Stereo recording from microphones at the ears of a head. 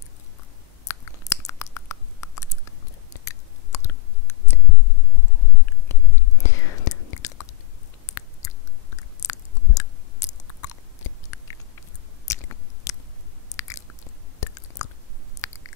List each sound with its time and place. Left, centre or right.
0.8 s a sound: left
5.5 s whispering: left
8.1 s chewing: left
12.3 s biting: left
13.5 s chewing: left